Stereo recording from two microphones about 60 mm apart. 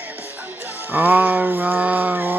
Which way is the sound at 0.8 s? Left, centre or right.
Right.